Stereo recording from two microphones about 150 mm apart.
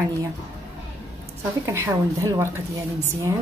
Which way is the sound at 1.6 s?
20° right (ahead or behind).